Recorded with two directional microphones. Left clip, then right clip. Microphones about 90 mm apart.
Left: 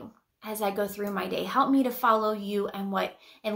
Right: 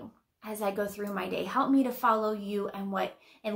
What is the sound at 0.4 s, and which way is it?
A woman's voice, 30° left (ahead or behind).